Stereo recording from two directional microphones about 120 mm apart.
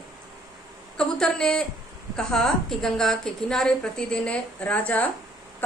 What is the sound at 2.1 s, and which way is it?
A woman's voice, 5° left (ahead or behind).